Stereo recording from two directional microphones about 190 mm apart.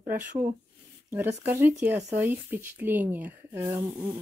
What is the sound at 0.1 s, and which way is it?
Speech, 10° right (ahead or behind).